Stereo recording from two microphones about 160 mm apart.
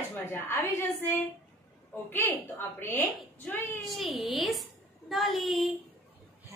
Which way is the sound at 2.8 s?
15° left (ahead or behind).